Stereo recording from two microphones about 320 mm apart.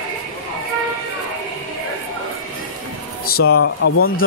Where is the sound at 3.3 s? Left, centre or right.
Left.